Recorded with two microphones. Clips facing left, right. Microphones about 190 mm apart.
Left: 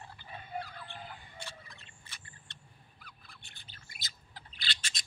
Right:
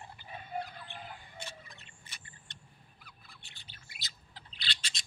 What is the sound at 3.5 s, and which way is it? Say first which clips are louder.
Bird: even; 45° left (ahead or behind).